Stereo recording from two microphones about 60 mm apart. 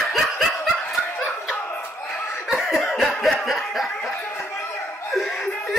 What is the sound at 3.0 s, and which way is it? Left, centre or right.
Snicker, centre.